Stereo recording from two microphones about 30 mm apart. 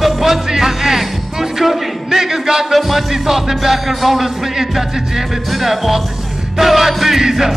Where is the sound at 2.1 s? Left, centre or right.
Centre.